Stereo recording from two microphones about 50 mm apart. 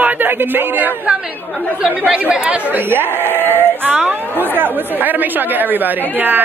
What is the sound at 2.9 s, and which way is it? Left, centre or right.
Speech, right.